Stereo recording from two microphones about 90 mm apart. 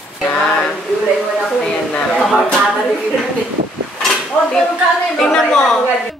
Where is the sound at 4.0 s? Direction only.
Centre (ahead or behind).